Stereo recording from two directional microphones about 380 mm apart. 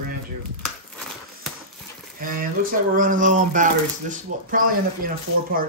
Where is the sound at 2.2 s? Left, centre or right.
Right.